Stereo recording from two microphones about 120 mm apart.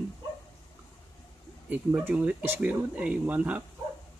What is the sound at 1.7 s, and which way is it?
Speech, 15° right (ahead or behind).